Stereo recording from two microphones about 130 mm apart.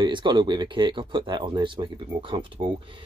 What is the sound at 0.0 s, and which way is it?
Speech, 35° right (ahead or behind).